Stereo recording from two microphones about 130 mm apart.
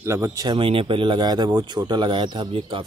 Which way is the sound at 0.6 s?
45° right (ahead or behind).